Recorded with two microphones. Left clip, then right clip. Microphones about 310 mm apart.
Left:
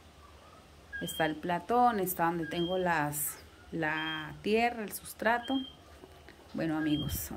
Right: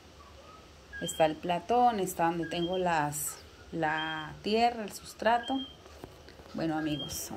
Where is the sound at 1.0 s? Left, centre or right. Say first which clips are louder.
Right 4 dB; centre.